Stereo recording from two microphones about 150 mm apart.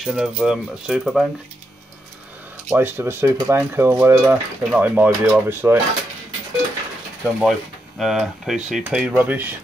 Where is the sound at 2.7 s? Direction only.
15° right (ahead or behind).